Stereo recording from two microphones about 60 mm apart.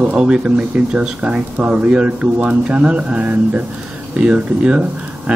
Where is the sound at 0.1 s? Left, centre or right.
Centre.